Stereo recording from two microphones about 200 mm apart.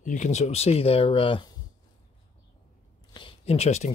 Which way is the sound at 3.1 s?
30° left (ahead or behind).